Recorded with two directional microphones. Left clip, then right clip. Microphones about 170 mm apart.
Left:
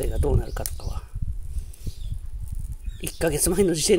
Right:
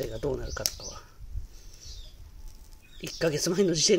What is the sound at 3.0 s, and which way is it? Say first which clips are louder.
Speech: left 3 dB; 40° left (ahead or behind).